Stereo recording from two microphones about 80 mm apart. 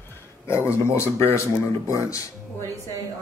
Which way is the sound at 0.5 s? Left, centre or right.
Left.